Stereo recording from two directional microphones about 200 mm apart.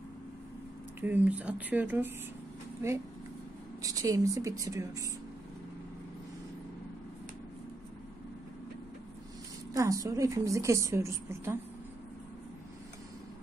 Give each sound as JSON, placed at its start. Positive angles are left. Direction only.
{"t": 1.0, "sound": "a woman's voice", "side_deg": -10}
{"t": 9.8, "sound": "a woman's voice", "side_deg": -15}